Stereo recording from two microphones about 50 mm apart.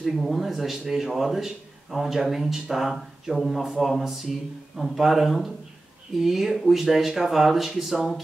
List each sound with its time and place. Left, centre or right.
0.0 s speech: centre